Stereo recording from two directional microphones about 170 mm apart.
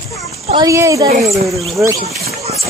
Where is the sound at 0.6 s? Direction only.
20° right (ahead or behind).